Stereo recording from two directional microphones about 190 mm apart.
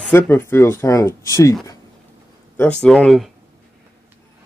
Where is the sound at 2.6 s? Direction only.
5° left (ahead or behind).